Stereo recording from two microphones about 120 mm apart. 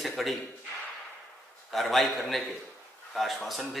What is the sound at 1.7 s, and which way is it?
A man's voice, centre (ahead or behind).